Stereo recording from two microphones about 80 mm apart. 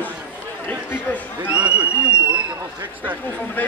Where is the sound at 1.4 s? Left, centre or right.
Centre.